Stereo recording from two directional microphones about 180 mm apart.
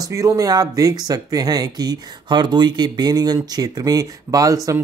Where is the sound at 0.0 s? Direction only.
15° right (ahead or behind).